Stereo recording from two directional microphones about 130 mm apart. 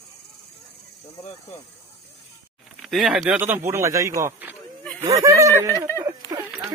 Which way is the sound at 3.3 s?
15° right (ahead or behind).